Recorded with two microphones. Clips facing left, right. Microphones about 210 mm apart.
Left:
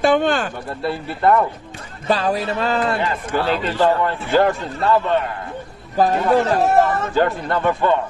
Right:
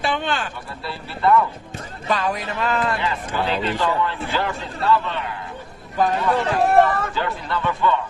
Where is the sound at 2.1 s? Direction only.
30° left (ahead or behind).